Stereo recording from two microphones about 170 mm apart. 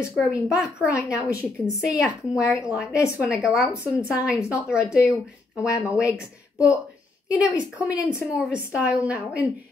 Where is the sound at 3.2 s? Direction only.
Centre (ahead or behind).